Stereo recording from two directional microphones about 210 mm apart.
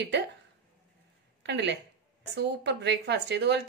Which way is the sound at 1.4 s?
55° right (ahead or behind).